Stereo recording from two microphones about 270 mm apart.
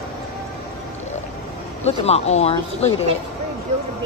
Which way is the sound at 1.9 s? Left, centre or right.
Left.